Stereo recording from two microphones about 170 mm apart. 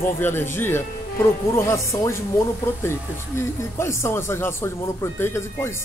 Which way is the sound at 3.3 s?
15° left (ahead or behind).